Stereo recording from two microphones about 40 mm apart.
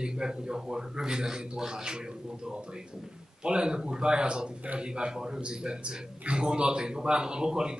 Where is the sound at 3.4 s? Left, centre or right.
Right.